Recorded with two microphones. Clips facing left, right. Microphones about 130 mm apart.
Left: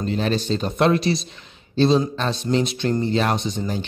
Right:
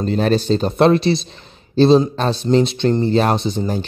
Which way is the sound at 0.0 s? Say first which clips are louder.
Right 6 dB; 40° right (ahead or behind).